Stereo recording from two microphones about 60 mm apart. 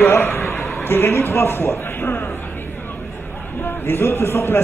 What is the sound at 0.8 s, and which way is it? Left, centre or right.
A man's voice, left.